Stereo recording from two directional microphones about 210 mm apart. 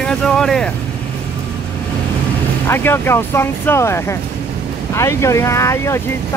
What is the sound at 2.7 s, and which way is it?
Speech, 10° left (ahead or behind).